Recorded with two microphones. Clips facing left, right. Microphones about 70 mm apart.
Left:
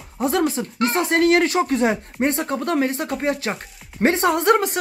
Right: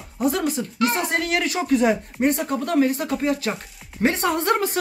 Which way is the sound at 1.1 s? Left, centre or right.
Left.